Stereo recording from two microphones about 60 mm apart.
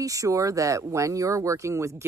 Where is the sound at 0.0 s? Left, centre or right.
Right.